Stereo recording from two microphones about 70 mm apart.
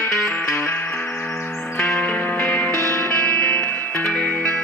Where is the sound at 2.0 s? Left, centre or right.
Left.